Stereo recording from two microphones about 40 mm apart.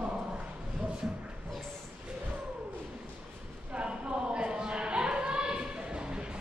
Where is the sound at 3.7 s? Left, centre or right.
Right.